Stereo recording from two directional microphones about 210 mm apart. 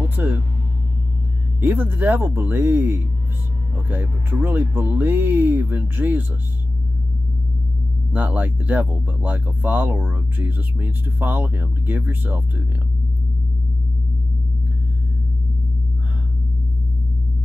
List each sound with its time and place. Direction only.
0.2 s vehicle: 10° right (ahead or behind)
1.6 s speech: 10° right (ahead or behind)
8.1 s speech: 5° right (ahead or behind)